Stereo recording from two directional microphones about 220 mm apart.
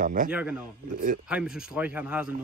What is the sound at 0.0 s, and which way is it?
Speech, 35° right (ahead or behind).